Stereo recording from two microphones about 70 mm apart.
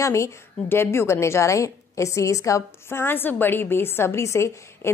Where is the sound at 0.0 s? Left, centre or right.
Left.